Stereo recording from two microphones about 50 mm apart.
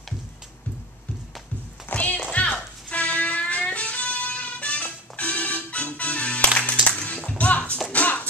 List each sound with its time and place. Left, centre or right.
2.0 s music: left